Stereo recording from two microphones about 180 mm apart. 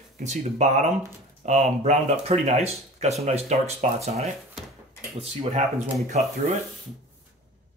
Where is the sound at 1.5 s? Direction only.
40° right (ahead or behind).